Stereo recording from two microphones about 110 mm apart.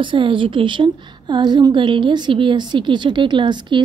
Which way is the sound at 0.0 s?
50° right (ahead or behind).